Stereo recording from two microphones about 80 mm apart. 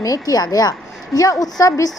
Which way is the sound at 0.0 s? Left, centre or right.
Left.